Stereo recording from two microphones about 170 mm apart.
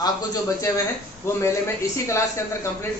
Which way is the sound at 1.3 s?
15° left (ahead or behind).